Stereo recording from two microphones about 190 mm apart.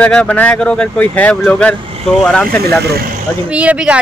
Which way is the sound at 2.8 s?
55° right (ahead or behind).